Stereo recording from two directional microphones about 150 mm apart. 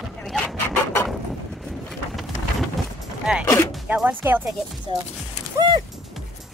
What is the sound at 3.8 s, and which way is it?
Speech, 10° right (ahead or behind).